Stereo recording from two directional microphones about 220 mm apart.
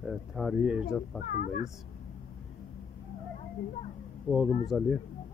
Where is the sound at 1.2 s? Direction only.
40° left (ahead or behind).